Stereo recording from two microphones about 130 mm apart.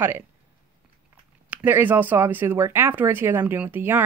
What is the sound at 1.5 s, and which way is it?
Speech, 15° right (ahead or behind).